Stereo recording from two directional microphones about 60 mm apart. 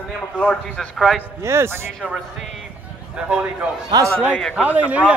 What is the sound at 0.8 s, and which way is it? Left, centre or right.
Speech, centre.